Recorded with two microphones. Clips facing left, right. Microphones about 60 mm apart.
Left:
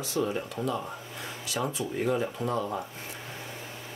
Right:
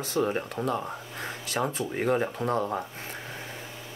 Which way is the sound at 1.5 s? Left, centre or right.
Right.